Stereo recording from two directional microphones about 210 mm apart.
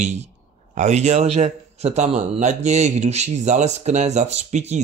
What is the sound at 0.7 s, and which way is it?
A man's voice, 35° right (ahead or behind).